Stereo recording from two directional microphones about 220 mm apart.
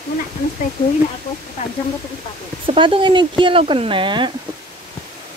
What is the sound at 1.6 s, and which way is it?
Speech, 30° left (ahead or behind).